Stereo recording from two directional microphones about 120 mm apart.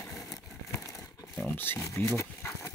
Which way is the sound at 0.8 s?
25° left (ahead or behind).